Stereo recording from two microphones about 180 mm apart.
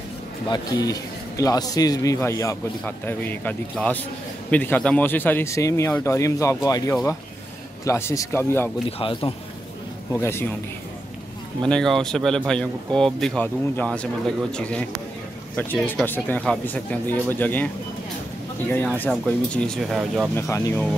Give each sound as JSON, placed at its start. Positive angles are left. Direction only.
{"t": 0.5, "sound": "a man's voice", "side_deg": 20}
{"t": 9.0, "sound": "a man's voice", "side_deg": 30}
{"t": 10.1, "sound": "a man's voice", "side_deg": 10}
{"t": 11.7, "sound": "a man's voice", "side_deg": 0}
{"t": 18.9, "sound": "speech", "side_deg": 5}
{"t": 20.3, "sound": "a man's voice", "side_deg": 15}